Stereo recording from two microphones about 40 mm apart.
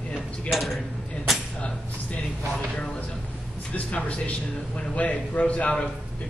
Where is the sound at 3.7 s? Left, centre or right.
Left.